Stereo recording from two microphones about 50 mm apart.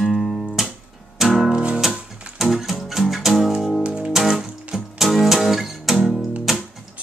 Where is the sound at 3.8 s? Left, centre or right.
Centre.